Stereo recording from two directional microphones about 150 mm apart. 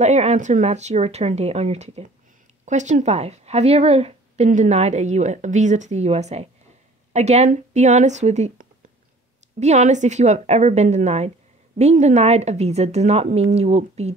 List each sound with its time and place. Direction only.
0.0 s a woman's voice: 50° right (ahead or behind)